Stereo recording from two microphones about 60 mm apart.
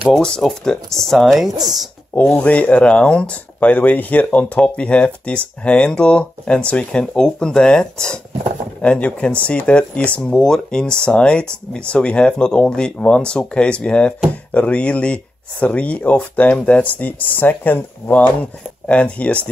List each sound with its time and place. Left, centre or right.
0.2 s speech: centre
2.4 s speech: left
18.9 s speech: left